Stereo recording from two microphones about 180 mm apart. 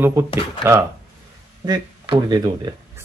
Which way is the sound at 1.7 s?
25° right (ahead or behind).